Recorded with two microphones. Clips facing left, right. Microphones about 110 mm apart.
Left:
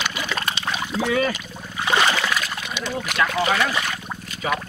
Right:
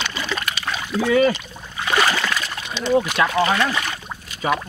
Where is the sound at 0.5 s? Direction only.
20° left (ahead or behind).